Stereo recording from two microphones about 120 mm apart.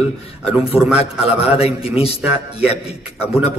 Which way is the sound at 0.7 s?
55° left (ahead or behind).